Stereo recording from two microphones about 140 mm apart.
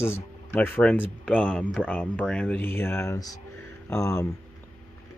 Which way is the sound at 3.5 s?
20° left (ahead or behind).